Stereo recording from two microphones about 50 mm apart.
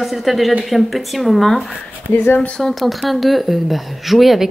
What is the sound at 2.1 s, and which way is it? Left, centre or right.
Speech, left.